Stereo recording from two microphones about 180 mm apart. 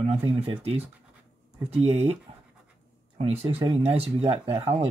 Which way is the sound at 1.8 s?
35° right (ahead or behind).